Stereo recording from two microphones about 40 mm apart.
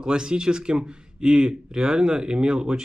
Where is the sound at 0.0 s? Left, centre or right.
Centre.